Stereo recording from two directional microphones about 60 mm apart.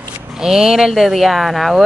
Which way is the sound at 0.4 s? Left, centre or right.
Centre.